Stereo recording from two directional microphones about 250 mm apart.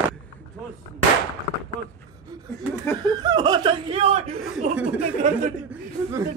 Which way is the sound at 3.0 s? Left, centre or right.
Centre.